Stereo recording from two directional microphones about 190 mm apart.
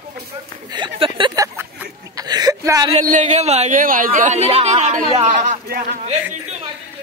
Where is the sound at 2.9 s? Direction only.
40° right (ahead or behind).